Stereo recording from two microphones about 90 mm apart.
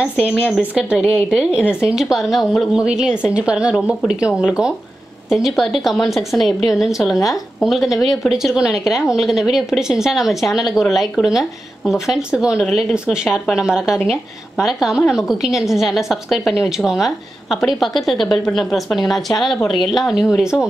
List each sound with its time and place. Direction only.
0.0 s a woman's voice: 15° right (ahead or behind)